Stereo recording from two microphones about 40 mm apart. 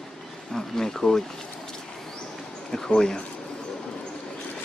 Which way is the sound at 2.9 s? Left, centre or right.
Left.